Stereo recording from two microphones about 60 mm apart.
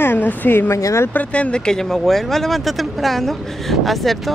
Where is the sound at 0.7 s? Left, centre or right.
Left.